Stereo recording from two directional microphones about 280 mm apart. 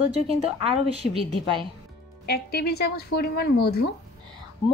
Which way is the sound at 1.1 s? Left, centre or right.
Centre.